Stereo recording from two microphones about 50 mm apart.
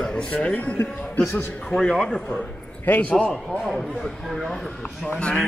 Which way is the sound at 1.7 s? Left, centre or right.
Centre.